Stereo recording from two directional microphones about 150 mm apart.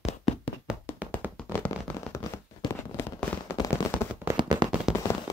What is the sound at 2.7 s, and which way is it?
Fireworks, 15° left (ahead or behind).